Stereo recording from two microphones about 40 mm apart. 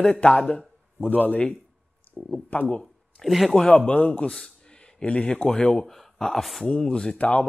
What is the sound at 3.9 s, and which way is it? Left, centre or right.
Speech, left.